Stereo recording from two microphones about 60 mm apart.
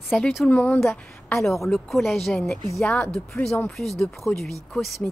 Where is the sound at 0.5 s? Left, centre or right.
Left.